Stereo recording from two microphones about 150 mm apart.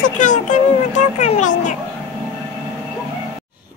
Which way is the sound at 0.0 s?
55° left (ahead or behind).